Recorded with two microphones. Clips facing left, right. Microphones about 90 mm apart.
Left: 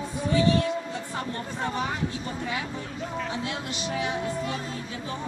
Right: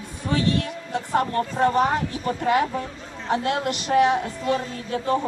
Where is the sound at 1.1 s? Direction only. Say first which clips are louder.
Right 13 dB; 50° right (ahead or behind).